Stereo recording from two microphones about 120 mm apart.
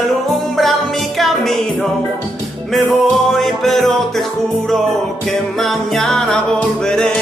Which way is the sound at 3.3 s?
Centre (ahead or behind).